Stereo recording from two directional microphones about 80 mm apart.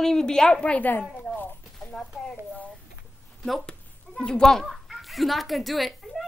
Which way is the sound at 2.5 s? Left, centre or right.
Centre.